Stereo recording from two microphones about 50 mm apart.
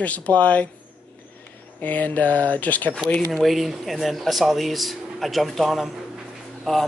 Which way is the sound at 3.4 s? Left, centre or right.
Centre.